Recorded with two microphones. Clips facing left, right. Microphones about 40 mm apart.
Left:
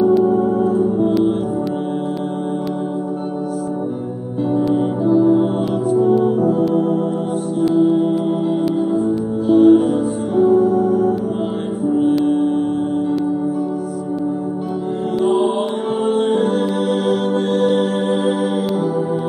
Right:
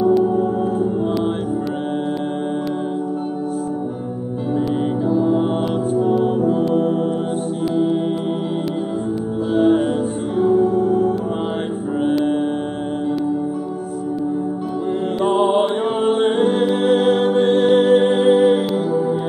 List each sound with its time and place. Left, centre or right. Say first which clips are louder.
0.0 s music: left 2 dB; centre
0.4 s music: left 3 dB; right
5.0 s music: left 5 dB; centre
6.2 s music: left 2 dB; right
9.5 s music: left 5 dB; centre
10.7 s music: left 1 dB; right
16.2 s music: even; right